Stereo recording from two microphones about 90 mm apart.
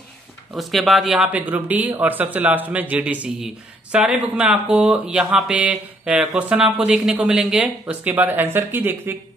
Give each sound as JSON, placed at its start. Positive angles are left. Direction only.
{"t": 0.6, "sound": "speech", "side_deg": 0}
{"t": 1.3, "sound": "speech", "side_deg": -20}
{"t": 8.0, "sound": "speech", "side_deg": -20}